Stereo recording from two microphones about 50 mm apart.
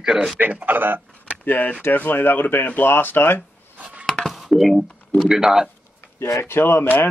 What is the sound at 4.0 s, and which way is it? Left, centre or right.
Chopping, centre.